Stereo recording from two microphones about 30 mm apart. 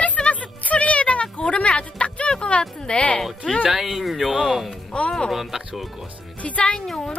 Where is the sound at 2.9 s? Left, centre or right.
Left.